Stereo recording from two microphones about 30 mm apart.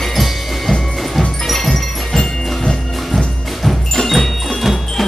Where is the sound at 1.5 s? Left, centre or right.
Centre.